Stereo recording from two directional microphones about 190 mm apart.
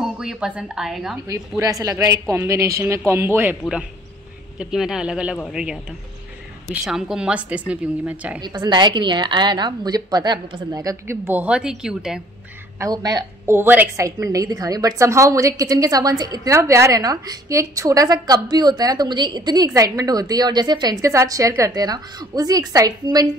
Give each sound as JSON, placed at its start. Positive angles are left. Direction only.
{"t": 0.0, "sound": "a woman's voice", "side_deg": -5}
{"t": 1.6, "sound": "a man's voice", "side_deg": -20}
{"t": 8.4, "sound": "a woman's voice", "side_deg": -25}
{"t": 12.7, "sound": "a woman's voice", "side_deg": -20}